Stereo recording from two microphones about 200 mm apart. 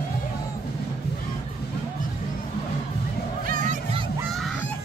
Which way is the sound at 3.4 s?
40° right (ahead or behind).